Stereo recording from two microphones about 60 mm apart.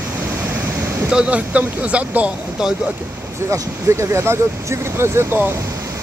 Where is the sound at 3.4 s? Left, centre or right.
Right.